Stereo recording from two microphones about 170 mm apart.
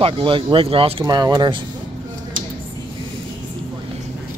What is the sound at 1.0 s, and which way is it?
Speech, 25° right (ahead or behind).